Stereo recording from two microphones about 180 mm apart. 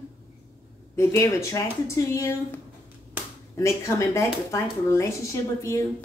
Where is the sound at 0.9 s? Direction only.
15° left (ahead or behind).